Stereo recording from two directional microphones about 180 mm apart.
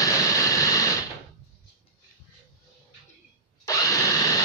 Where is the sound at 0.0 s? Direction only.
20° left (ahead or behind).